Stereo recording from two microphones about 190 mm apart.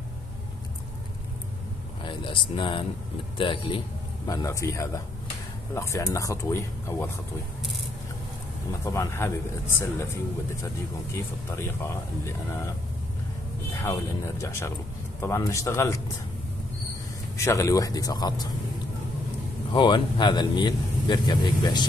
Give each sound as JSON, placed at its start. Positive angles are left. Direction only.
{"t": 2.0, "sound": "speech", "side_deg": 25}
{"t": 8.8, "sound": "speech", "side_deg": 15}
{"t": 11.5, "sound": "speech", "side_deg": 15}
{"t": 17.4, "sound": "speech", "side_deg": 15}
{"t": 19.7, "sound": "speech", "side_deg": 25}